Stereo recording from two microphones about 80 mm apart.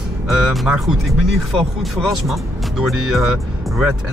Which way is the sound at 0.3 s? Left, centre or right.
Centre.